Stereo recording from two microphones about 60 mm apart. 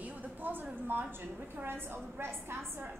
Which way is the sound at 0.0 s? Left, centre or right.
Right.